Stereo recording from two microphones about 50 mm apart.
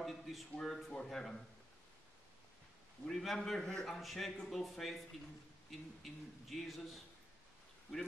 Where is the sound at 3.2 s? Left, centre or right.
Centre.